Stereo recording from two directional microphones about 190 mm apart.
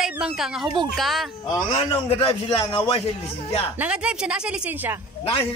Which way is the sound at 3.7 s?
5° right (ahead or behind).